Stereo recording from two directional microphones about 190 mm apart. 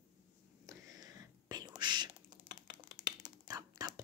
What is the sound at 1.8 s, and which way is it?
Typing, 25° right (ahead or behind).